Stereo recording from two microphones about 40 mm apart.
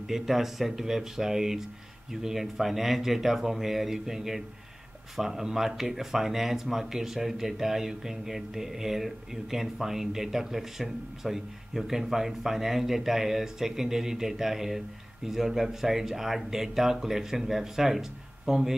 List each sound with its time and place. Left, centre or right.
0.1 s speech: centre